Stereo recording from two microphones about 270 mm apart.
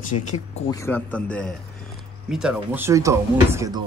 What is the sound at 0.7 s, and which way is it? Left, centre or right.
Speech, centre.